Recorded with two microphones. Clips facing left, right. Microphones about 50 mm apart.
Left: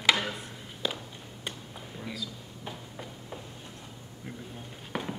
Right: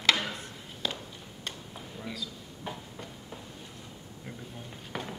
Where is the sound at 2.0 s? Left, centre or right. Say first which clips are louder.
Left 1 dB; centre.